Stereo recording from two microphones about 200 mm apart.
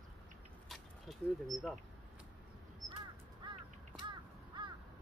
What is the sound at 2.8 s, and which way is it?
Crow, 40° right (ahead or behind).